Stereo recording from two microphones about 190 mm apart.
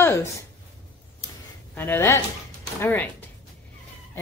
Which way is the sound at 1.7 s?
10° left (ahead or behind).